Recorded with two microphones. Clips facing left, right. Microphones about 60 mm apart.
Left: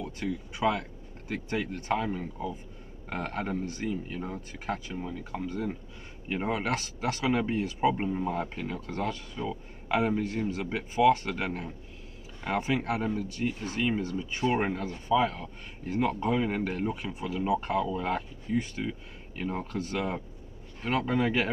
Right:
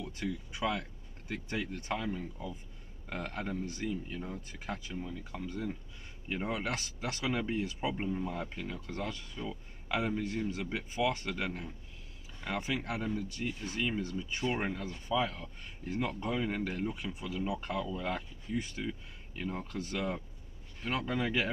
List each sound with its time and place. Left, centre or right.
0.6 s a man's voice: left
14.8 s speech: left
15.1 s speech: left